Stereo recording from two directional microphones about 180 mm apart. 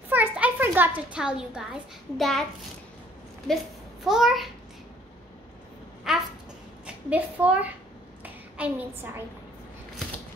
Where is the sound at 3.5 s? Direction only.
Centre (ahead or behind).